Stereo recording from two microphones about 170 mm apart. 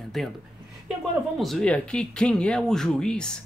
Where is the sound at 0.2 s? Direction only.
Centre (ahead or behind).